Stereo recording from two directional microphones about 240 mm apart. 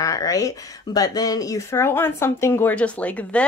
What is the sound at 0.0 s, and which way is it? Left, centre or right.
Speech, centre.